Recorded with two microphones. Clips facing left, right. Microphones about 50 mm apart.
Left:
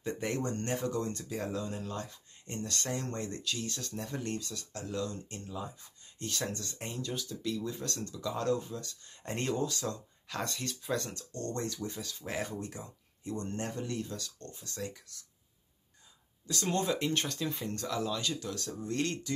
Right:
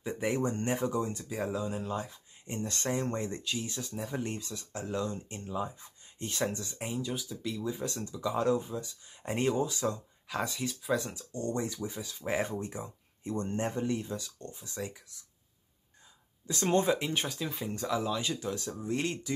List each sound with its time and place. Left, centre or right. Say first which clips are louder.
0.0 s speech: right 3 dB; centre
16.4 s speech: right 4 dB; right
17.0 s speech: left 1 dB; centre